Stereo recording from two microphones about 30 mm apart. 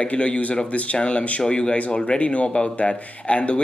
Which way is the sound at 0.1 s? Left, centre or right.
Left.